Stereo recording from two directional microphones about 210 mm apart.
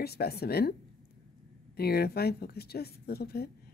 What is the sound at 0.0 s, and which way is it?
Speech, 50° left (ahead or behind).